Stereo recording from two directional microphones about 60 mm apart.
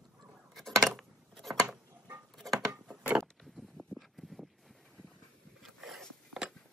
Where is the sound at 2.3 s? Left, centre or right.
Centre.